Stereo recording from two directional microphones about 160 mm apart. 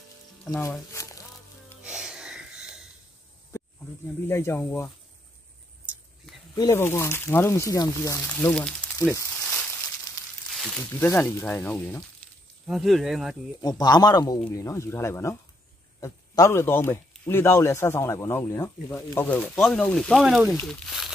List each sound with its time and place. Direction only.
0.5 s speech: 20° left (ahead or behind)
0.9 s music: 20° left (ahead or behind)
1.9 s a sound: 5° right (ahead or behind)
4.3 s speech: 15° left (ahead or behind)
6.5 s speech: 20° left (ahead or behind)
9.1 s a sound: 10° left (ahead or behind)
10.8 s speech: 15° left (ahead or behind)
12.6 s speech: centre (ahead or behind)
13.6 s a man's voice: 25° left (ahead or behind); by 21.1 s centre (ahead or behind)